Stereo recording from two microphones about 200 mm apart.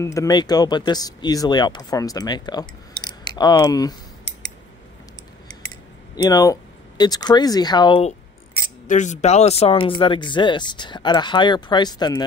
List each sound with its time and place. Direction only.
0.0 s speech: 15° left (ahead or behind)
6.1 s speech: 20° left (ahead or behind)
8.8 s speech: 35° left (ahead or behind); by 12.2 s 20° left (ahead or behind)